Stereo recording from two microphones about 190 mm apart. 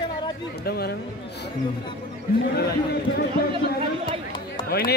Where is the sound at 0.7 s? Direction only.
55° left (ahead or behind).